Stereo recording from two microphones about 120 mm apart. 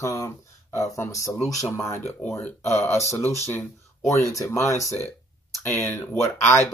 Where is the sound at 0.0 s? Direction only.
25° left (ahead or behind).